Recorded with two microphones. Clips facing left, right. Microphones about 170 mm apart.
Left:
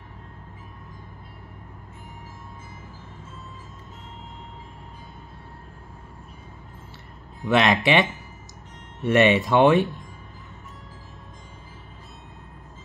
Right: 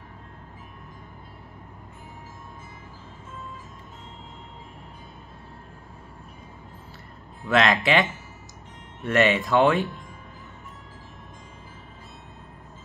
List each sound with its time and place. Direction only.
7.4 s speech: 20° left (ahead or behind)
9.0 s speech: 20° left (ahead or behind)